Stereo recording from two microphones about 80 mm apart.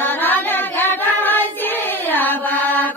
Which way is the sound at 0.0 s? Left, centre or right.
Left.